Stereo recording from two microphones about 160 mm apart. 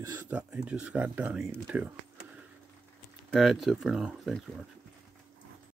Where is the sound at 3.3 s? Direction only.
Centre (ahead or behind).